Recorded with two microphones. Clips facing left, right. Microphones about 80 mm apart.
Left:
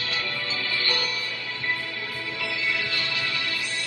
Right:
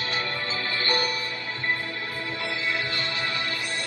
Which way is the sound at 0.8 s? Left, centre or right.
Right.